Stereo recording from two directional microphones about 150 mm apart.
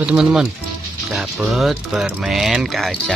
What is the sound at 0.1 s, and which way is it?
Speech, 5° right (ahead or behind).